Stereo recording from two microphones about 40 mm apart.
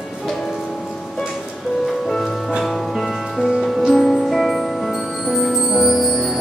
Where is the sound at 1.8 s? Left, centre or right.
Centre.